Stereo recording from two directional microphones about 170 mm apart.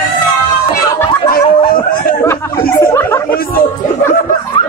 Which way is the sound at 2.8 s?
15° left (ahead or behind).